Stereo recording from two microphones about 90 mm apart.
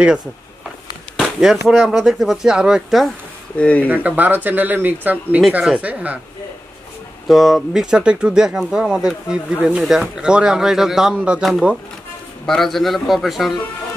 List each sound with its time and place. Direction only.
1.1 s a sound: centre (ahead or behind)
1.7 s speech: centre (ahead or behind)
3.5 s speech: 15° left (ahead or behind)
3.8 s speech: 20° right (ahead or behind)
7.2 s speech: centre (ahead or behind)
7.8 s speech: 10° right (ahead or behind)
12.4 s speech: 5° left (ahead or behind)